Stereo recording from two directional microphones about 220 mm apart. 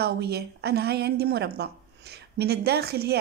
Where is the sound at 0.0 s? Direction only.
45° right (ahead or behind).